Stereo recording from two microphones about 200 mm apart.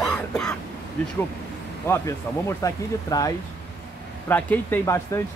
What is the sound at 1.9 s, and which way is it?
Speech, 15° left (ahead or behind).